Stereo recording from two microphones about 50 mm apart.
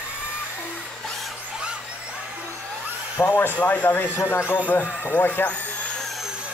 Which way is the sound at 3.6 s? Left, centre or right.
Left.